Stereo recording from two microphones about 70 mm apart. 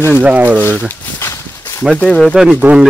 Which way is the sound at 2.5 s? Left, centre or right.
Centre.